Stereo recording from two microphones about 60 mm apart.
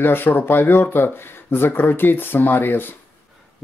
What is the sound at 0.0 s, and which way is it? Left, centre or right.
Speech, left.